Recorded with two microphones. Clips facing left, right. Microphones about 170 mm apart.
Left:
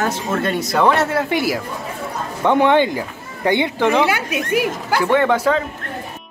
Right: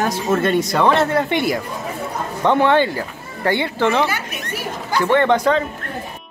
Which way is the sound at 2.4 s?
15° left (ahead or behind).